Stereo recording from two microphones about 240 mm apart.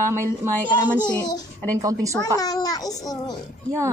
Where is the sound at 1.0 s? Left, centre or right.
Centre.